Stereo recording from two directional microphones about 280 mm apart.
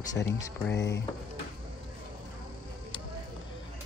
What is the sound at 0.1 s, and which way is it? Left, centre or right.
Speech, centre.